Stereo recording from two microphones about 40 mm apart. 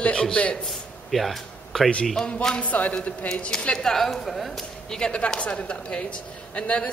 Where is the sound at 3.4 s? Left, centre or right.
Left.